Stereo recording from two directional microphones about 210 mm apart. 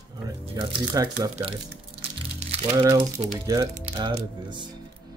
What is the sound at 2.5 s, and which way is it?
Speech, 15° right (ahead or behind).